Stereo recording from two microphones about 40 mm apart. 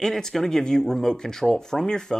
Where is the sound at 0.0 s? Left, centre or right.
Centre.